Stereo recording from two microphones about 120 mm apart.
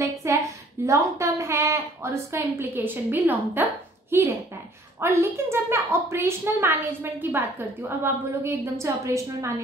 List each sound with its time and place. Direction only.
0.0 s a woman's voice: 25° right (ahead or behind)